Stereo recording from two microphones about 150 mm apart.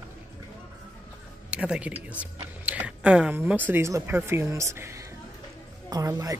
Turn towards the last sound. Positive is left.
turn(degrees=-20)  # may be behind; listen again after turning